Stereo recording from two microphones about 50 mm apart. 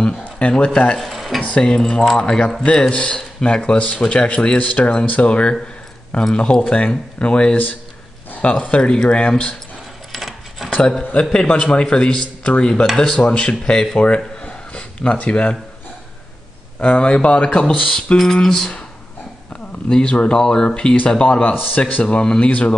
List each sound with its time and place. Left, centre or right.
0.4 s speech: left
0.9 s a sound: centre
1.4 s speech: left
10.1 s keys jangling: centre
10.8 s speech: centre
13.2 s speech: left
16.8 s speech: left
19.9 s speech: centre
21.7 s speech: left
22.0 s speech: centre